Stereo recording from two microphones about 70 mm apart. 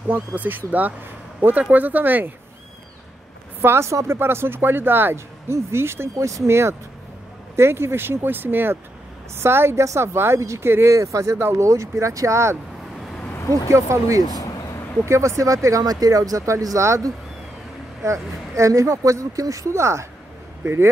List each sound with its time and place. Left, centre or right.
0.1 s speech: right
3.6 s speech: right
14.2 s speech: left
15.0 s speech: right
15.8 s speech: right